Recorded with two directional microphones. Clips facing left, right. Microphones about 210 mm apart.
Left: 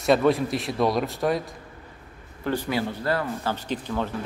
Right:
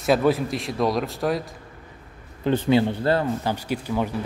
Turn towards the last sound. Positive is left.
turn(degrees=-10)  # may be behind; listen again after turning